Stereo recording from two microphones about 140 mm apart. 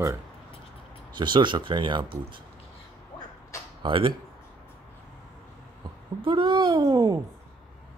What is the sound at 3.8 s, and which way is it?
Speech, 40° right (ahead or behind).